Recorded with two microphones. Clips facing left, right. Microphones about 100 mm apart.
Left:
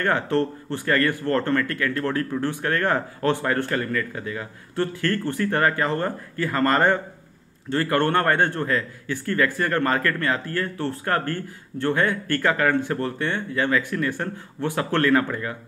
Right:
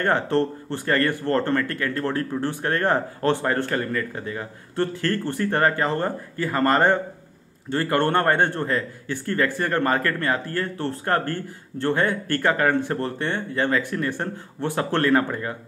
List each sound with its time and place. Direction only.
0.0 s speech: 25° right (ahead or behind)